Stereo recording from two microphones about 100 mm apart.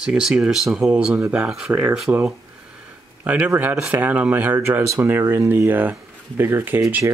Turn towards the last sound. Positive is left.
turn(degrees=-20)  # may be behind; listen again after turning